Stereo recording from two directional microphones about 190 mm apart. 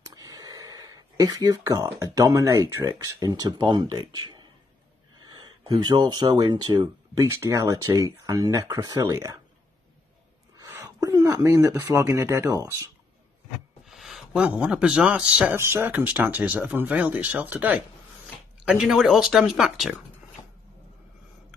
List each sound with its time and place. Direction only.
0.0 s a sound: 20° right (ahead or behind)
2.1 s speech: 15° right (ahead or behind)
5.2 s a sound: 20° right (ahead or behind)
5.7 s speech: 20° right (ahead or behind)
10.6 s a man's voice: 15° right (ahead or behind)
13.8 s a man's voice: centre (ahead or behind)